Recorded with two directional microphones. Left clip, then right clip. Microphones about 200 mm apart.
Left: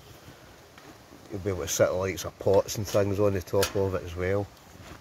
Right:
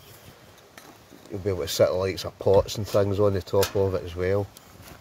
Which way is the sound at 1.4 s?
25° right (ahead or behind).